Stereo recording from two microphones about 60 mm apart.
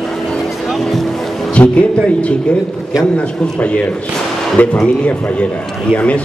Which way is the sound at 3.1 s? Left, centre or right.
Left.